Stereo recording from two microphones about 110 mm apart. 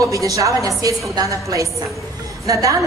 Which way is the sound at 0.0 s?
30° right (ahead or behind).